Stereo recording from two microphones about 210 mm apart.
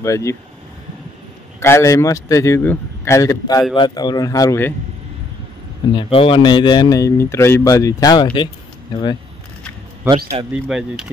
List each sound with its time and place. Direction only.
0.0 s a man's voice: 15° left (ahead or behind)
1.6 s a man's voice: 15° left (ahead or behind)
5.9 s speech: 25° left (ahead or behind)
10.1 s a man's voice: 10° right (ahead or behind)